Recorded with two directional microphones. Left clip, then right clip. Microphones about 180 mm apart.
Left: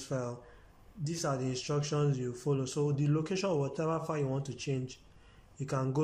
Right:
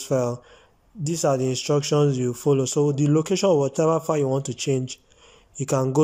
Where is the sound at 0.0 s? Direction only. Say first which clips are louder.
Right 14 dB; 45° right (ahead or behind).